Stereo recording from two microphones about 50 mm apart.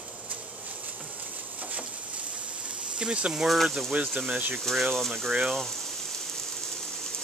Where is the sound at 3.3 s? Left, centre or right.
Centre.